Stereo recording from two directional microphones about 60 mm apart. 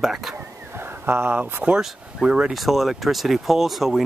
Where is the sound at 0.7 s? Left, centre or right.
Right.